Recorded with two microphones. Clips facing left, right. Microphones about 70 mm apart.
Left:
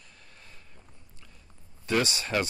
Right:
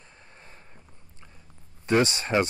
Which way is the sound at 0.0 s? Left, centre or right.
Right.